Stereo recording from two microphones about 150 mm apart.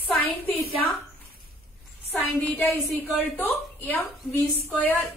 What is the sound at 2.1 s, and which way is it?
A woman's voice, 5° left (ahead or behind).